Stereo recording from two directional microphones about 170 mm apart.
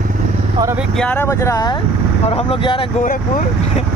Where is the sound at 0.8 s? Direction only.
5° left (ahead or behind); by 1.8 s 20° left (ahead or behind).